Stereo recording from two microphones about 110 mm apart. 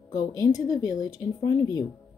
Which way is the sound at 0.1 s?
35° left (ahead or behind).